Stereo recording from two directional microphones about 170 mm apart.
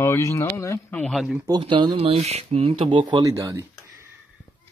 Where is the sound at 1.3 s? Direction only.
20° right (ahead or behind).